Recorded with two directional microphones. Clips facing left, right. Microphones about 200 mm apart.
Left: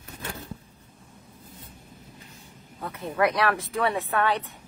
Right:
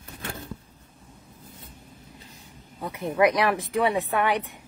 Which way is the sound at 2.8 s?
15° right (ahead or behind).